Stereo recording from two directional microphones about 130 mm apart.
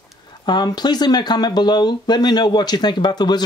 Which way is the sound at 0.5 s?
35° left (ahead or behind).